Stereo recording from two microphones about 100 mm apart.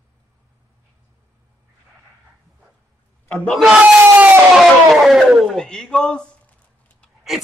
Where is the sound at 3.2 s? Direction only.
10° left (ahead or behind).